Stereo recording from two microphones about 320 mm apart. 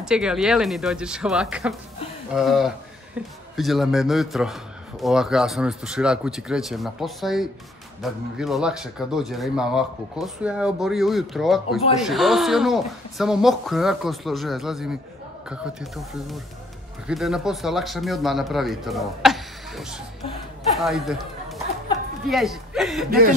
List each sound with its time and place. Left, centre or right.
0.0 s speech: centre
23.0 s speech: right